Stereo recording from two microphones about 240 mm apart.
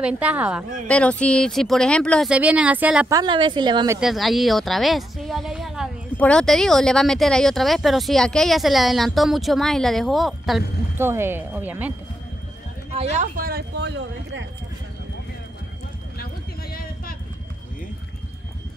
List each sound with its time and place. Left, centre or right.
0.0 s a woman's voice: centre
3.2 s a woman's voice: centre
4.0 s a woman's voice: centre
12.9 s speech: right
16.7 s clip-clop: left